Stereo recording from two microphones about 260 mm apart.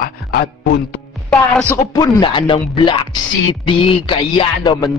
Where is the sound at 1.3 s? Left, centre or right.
Centre.